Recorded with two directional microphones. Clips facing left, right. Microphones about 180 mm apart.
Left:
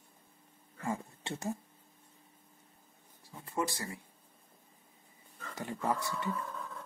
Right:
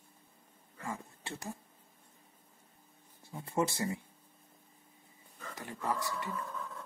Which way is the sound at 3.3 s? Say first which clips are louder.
Right 3 dB; 25° right (ahead or behind).